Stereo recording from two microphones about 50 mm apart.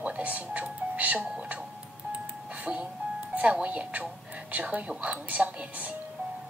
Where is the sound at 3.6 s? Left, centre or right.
Right.